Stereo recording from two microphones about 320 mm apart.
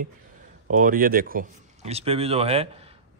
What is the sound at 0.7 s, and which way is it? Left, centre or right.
Speech, right.